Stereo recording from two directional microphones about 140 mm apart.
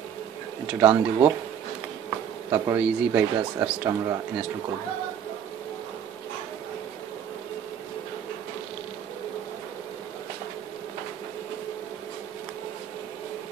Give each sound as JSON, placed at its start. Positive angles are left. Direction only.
{"t": 0.7, "sound": "speech", "side_deg": -15}
{"t": 2.5, "sound": "speech", "side_deg": -15}